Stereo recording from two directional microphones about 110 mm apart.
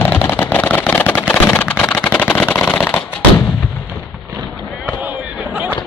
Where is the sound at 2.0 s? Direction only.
15° left (ahead or behind).